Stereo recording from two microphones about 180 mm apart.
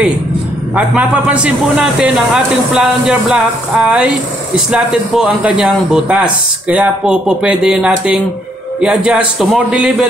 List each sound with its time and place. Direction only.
0.7 s a man's voice: 5° right (ahead or behind)